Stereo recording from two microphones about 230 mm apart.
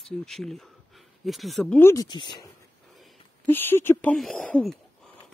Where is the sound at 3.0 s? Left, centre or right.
Centre.